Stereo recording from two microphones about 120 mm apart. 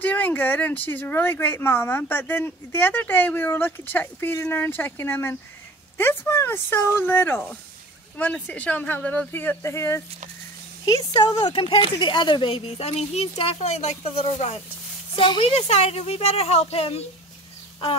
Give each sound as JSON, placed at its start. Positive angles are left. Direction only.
{"t": 0.0, "sound": "speech", "side_deg": 15}
{"t": 10.9, "sound": "speech", "side_deg": 35}
{"t": 15.1, "sound": "speech", "side_deg": 45}
{"t": 15.5, "sound": "speech", "side_deg": 65}